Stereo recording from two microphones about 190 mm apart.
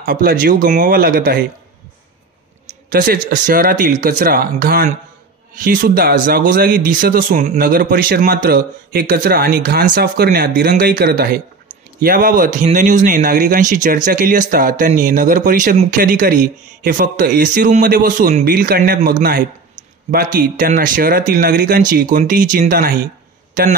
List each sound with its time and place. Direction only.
0.0 s speech: 55° right (ahead or behind)
2.9 s a man's voice: 50° right (ahead or behind)